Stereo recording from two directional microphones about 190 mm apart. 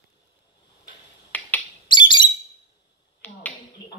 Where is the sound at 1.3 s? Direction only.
10° left (ahead or behind).